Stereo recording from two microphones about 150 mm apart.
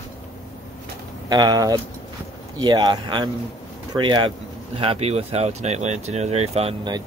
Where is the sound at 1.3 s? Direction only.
25° right (ahead or behind); by 6.7 s 45° right (ahead or behind).